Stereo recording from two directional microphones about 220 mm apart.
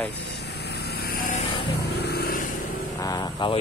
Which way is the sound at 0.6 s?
45° left (ahead or behind).